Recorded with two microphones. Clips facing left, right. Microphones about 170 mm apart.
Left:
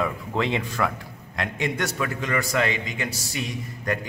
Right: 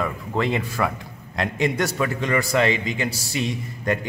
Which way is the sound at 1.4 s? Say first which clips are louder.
Right 4 dB; 35° right (ahead or behind).